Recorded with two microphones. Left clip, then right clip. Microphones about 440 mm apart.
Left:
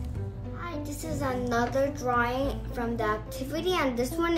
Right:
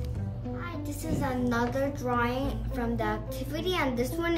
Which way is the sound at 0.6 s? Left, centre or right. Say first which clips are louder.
Left 4 dB; centre.